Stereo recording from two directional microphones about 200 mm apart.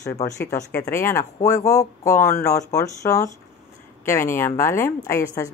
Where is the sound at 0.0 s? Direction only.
15° left (ahead or behind).